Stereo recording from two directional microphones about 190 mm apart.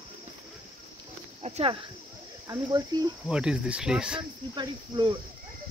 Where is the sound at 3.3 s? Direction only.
5° right (ahead or behind).